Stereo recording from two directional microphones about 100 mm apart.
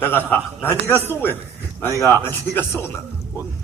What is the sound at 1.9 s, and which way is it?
Speech, 35° right (ahead or behind).